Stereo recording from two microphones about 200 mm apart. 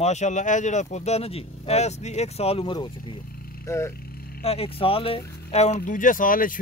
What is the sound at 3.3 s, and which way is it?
Vehicle, 50° left (ahead or behind).